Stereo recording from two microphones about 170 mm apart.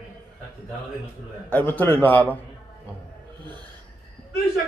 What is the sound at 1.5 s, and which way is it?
Speech, 10° left (ahead or behind).